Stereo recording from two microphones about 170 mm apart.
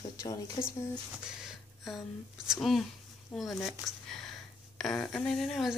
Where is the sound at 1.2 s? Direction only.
Centre (ahead or behind).